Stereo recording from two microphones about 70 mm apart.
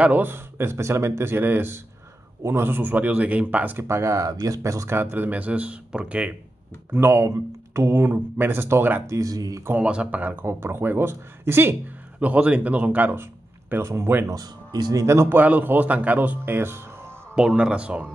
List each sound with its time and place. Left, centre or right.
0.0 s speech: right
3.8 s speech: right
4.9 s speech: right
6.9 s speech: right
9.1 s speech: right
9.8 s speech: centre
10.2 s speech: right
12.2 s speech: centre
13.2 s speech: right
14.3 s speech: right
15.0 s speech: right
15.3 s speech: right
17.4 s speech: centre